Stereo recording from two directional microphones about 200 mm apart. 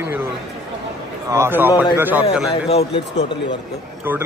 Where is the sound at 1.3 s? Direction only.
10° right (ahead or behind).